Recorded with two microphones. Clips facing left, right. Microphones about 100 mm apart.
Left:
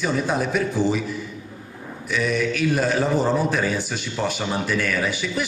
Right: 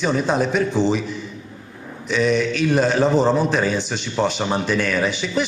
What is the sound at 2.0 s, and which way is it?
Speech, 20° right (ahead or behind).